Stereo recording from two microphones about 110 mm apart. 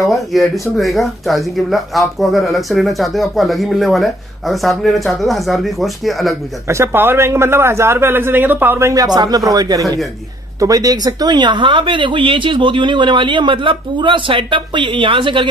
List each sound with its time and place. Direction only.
0.1 s speech: centre (ahead or behind)
6.7 s a man's voice: 25° right (ahead or behind); by 15.4 s 50° right (ahead or behind)